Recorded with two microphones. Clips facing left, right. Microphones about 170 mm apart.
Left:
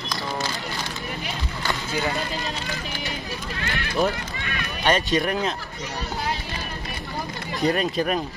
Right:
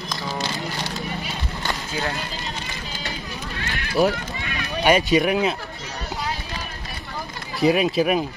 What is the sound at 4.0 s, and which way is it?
Speech, 5° right (ahead or behind).